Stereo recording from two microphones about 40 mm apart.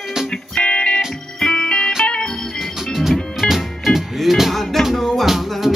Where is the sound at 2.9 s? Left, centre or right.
Centre.